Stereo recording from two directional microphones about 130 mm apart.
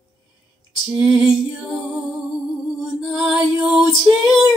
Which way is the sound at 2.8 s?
Centre (ahead or behind).